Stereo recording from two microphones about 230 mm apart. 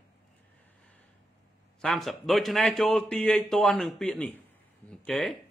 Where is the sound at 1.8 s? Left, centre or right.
Centre.